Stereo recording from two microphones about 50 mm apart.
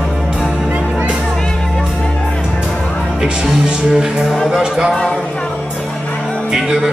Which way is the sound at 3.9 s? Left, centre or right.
Centre.